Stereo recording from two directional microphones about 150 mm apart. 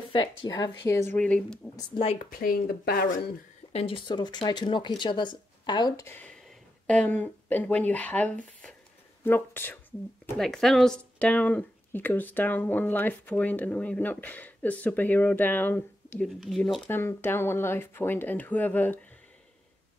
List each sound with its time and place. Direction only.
0.1 s a woman's voice: 30° left (ahead or behind)
1.1 s speech: 10° left (ahead or behind)
2.2 s speech: 75° left (ahead or behind)
3.7 s speech: 35° left (ahead or behind)
6.0 s speech: 10° left (ahead or behind)
16.3 s speech: centre (ahead or behind)
16.9 s speech: 15° left (ahead or behind)